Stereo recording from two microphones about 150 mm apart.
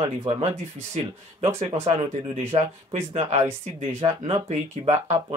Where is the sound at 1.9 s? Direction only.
45° right (ahead or behind).